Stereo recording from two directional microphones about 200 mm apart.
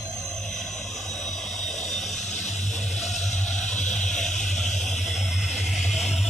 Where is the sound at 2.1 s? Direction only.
35° left (ahead or behind).